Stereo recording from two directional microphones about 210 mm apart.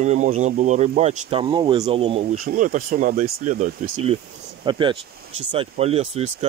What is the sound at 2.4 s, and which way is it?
Speech, 40° right (ahead or behind).